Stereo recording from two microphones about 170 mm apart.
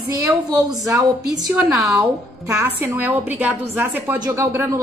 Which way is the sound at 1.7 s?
5° right (ahead or behind).